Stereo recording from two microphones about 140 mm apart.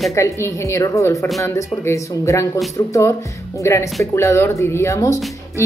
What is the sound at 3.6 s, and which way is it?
A woman's voice, 20° left (ahead or behind).